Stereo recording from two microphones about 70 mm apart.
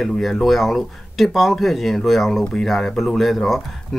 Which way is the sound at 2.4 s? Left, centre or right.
Centre.